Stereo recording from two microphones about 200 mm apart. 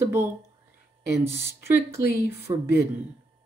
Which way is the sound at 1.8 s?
50° left (ahead or behind).